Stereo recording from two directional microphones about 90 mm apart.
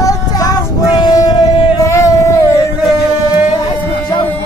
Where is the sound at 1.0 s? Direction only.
45° left (ahead or behind).